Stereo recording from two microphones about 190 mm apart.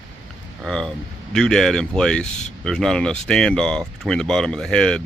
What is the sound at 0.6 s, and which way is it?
Speech, centre (ahead or behind).